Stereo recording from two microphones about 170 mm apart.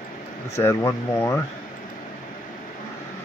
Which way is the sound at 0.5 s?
15° left (ahead or behind).